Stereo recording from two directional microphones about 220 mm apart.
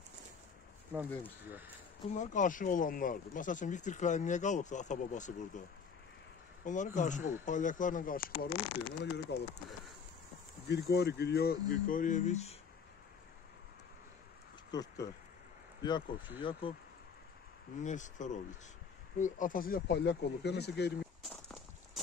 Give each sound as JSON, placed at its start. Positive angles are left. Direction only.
{"t": 2.1, "sound": "speech", "side_deg": 35}
{"t": 6.6, "sound": "speech", "side_deg": 35}
{"t": 8.5, "sound": "speech", "side_deg": 25}
{"t": 9.0, "sound": "speech", "side_deg": 50}
{"t": 10.7, "sound": "speech", "side_deg": 50}
{"t": 14.7, "sound": "speech", "side_deg": 15}
{"t": 16.3, "sound": "speech", "side_deg": 20}
{"t": 17.8, "sound": "speech", "side_deg": 35}
{"t": 21.2, "sound": "walk", "side_deg": 0}